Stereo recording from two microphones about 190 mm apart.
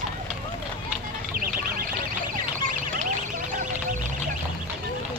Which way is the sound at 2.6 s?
45° right (ahead or behind).